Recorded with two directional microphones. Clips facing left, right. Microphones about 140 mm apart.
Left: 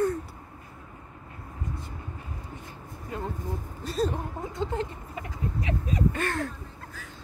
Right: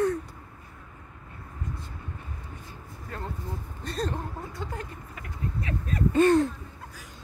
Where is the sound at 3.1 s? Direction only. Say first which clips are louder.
Left 3 dB; 15° left (ahead or behind).